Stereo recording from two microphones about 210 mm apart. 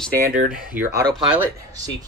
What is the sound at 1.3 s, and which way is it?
Speech, 10° right (ahead or behind).